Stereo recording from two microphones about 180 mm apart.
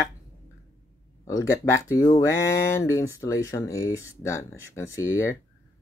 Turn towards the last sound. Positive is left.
turn(degrees=15)  # may be behind; listen again after turning